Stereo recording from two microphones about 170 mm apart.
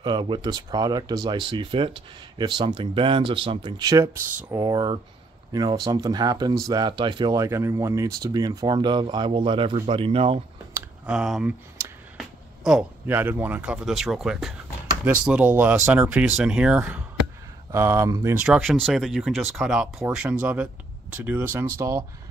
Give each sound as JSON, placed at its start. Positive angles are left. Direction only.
{"t": 0.0, "sound": "speech", "side_deg": -25}
{"t": 11.1, "sound": "speech", "side_deg": -5}
{"t": 17.7, "sound": "speech", "side_deg": -15}
{"t": 18.4, "sound": "speech", "side_deg": 0}